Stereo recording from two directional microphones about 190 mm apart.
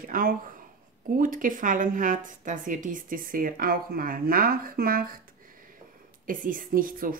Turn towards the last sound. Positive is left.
turn(degrees=-45)  # may be behind; listen again after turning